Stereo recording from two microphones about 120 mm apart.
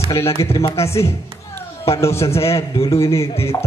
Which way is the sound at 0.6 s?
55° left (ahead or behind).